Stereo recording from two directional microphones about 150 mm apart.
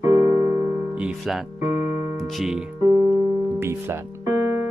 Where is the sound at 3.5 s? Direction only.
15° right (ahead or behind).